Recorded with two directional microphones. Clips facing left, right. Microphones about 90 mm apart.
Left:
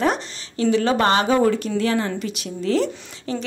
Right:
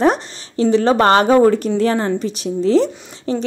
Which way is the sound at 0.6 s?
35° right (ahead or behind).